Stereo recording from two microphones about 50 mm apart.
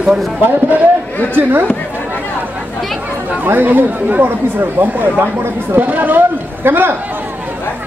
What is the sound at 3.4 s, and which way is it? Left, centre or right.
Speech, right.